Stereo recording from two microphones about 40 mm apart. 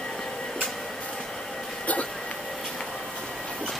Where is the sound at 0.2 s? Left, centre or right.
Centre.